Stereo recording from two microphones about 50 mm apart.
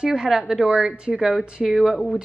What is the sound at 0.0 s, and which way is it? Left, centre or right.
A woman's voice, centre.